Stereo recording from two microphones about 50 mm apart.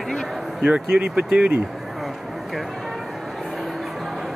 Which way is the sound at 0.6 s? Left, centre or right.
Centre.